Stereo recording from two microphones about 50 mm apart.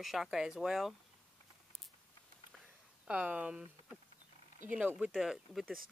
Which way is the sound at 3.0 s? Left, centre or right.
Right.